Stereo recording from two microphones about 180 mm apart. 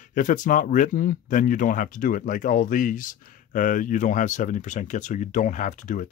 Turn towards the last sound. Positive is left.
turn(degrees=45)  # may be behind; listen again after turning